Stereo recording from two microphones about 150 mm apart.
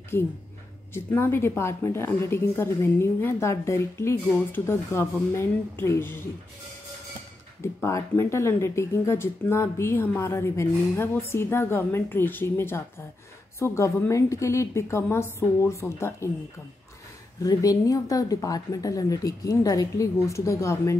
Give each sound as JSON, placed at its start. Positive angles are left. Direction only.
{"t": 0.1, "sound": "speech", "side_deg": 15}
{"t": 7.6, "sound": "a woman's voice", "side_deg": 15}
{"t": 17.4, "sound": "a woman's voice", "side_deg": 25}